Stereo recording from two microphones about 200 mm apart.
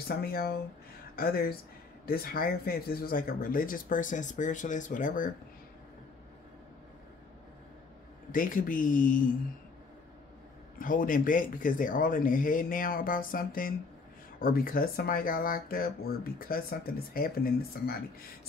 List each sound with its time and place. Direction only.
0.1 s speech: 50° left (ahead or behind)
8.3 s speech: 45° left (ahead or behind)
10.8 s speech: 40° left (ahead or behind)